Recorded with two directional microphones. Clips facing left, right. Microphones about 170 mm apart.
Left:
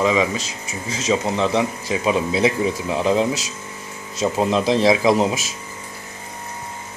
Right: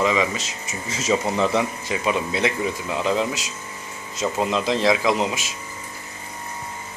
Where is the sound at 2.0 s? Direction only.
30° left (ahead or behind).